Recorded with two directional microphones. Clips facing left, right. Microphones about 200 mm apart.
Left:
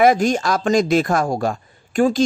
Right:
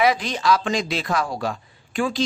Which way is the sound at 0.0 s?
45° left (ahead or behind).